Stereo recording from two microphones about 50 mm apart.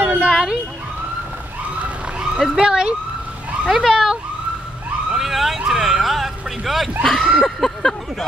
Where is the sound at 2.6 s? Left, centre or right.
Centre.